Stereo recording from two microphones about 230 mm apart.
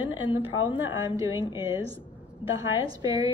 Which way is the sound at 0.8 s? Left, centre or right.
Centre.